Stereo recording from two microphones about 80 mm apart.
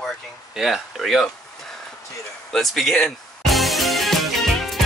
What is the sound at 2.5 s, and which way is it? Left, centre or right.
Music, centre.